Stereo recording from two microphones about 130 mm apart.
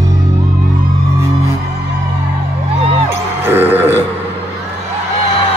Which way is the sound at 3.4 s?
15° right (ahead or behind).